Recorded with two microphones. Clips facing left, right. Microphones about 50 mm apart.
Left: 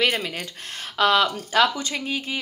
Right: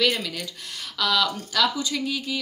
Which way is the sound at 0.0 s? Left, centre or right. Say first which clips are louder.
Left 1 dB; left.